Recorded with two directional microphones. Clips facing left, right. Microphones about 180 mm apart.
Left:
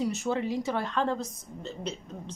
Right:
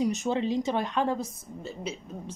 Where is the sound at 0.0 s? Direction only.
20° right (ahead or behind).